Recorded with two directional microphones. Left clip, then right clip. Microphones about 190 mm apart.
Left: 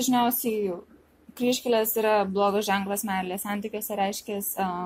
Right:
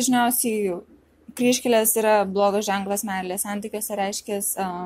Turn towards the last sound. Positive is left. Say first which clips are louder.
# right 2 dB
turn(degrees=-15)  # may be behind; listen again after turning